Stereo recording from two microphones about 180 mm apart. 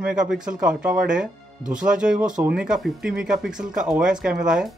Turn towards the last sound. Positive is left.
turn(degrees=-5)  # may be behind; listen again after turning